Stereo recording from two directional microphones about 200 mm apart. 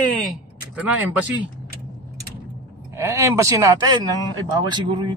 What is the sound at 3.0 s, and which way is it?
Speech, 15° right (ahead or behind).